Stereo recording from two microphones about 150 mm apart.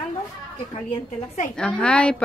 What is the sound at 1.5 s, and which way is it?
Speech, 5° left (ahead or behind).